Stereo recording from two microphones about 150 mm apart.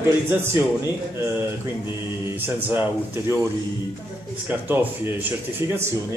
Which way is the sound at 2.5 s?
15° right (ahead or behind).